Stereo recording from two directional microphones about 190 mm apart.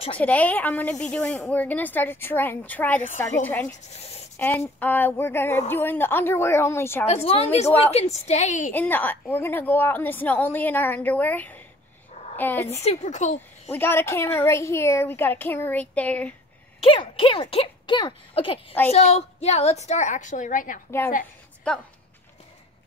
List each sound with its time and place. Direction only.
0.2 s a woman's voice: 5° left (ahead or behind)
7.8 s a woman's voice: 35° left (ahead or behind)
8.7 s a woman's voice: 10° left (ahead or behind)
12.8 s a woman's voice: 40° left (ahead or behind)
13.7 s a woman's voice: 10° left (ahead or behind)
16.8 s a woman's voice: 30° left (ahead or behind); by 20.8 s 45° left (ahead or behind)
21.7 s speech: 5° left (ahead or behind)